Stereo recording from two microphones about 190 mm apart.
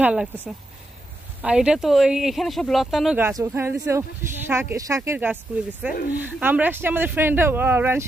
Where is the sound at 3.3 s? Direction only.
15° right (ahead or behind).